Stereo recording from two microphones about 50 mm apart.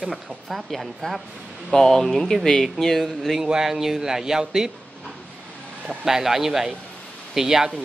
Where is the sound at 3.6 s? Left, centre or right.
Centre.